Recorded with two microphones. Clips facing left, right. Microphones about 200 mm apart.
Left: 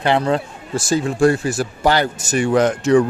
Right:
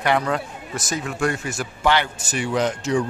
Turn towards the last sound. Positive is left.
turn(degrees=60)  # may be behind; listen again after turning